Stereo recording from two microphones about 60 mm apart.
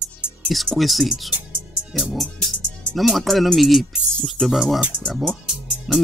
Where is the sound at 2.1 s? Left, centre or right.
Centre.